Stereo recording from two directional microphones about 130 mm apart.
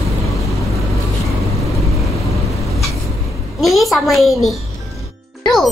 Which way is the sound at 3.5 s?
Centre (ahead or behind).